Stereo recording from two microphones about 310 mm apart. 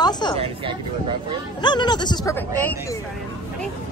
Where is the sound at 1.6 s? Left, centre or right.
Centre.